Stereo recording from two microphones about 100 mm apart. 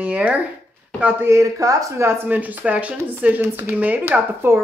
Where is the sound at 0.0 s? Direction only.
15° right (ahead or behind).